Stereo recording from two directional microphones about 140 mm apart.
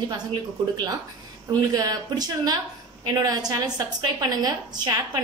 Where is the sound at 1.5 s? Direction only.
25° right (ahead or behind).